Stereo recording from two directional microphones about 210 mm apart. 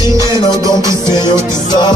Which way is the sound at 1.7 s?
20° left (ahead or behind).